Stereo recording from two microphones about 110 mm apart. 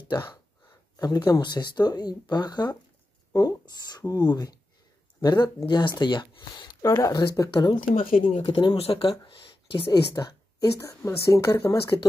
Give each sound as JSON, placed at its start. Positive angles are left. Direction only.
{"t": 0.9, "sound": "speech", "side_deg": 35}
{"t": 6.8, "sound": "speech", "side_deg": 30}
{"t": 7.6, "sound": "speech", "side_deg": 45}
{"t": 8.3, "sound": "speech", "side_deg": 90}
{"t": 8.7, "sound": "speech", "side_deg": 65}
{"t": 9.2, "sound": "speech", "side_deg": 50}
{"t": 10.1, "sound": "speech", "side_deg": 30}